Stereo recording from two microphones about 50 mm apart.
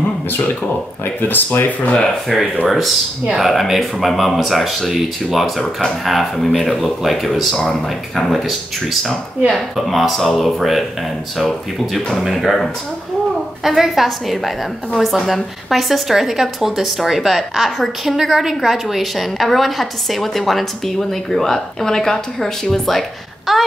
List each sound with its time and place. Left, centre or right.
1.0 s speech: left
2.3 s a woman's voice: centre
13.7 s a woman's voice: centre